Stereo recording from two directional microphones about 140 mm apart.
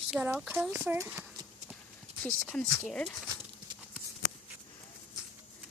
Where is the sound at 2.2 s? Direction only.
5° left (ahead or behind).